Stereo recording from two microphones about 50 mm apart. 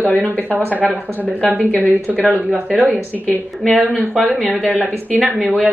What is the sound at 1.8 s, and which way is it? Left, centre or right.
A woman's voice, right.